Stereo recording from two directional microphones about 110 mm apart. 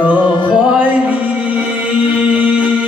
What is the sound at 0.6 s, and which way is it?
Music, 15° right (ahead or behind).